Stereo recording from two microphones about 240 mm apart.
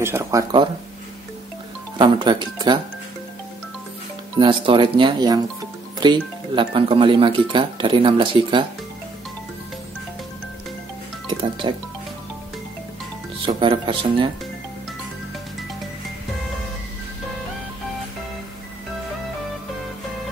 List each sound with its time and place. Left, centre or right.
0.0 s speech: centre
2.0 s speech: centre
4.4 s speech: centre
11.2 s speech: centre
13.4 s speech: centre